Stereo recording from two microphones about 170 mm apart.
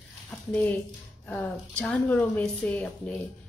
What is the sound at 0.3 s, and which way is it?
Speech, 10° left (ahead or behind).